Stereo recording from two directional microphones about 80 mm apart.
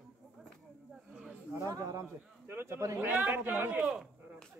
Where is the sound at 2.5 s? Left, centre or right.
Right.